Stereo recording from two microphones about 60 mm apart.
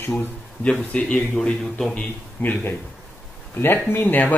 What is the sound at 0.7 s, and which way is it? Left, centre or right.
A man's voice, centre.